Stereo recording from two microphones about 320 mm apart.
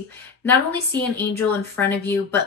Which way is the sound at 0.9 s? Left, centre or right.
Centre.